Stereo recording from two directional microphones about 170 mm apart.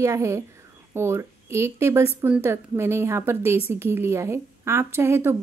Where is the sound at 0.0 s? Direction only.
15° right (ahead or behind).